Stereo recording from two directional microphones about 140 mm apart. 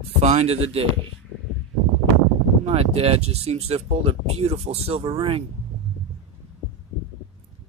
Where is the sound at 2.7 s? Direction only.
45° right (ahead or behind).